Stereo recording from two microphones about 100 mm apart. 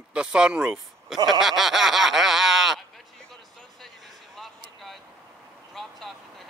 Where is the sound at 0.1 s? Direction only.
10° right (ahead or behind).